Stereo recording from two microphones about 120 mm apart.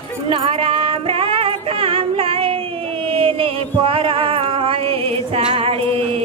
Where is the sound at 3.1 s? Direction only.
50° right (ahead or behind).